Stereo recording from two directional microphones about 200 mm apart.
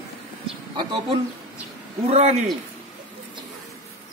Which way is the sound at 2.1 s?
35° right (ahead or behind).